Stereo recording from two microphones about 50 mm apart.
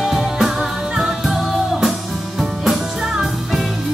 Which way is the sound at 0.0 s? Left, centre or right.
Centre.